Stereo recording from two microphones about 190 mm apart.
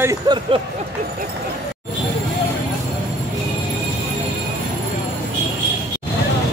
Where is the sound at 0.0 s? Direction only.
15° right (ahead or behind).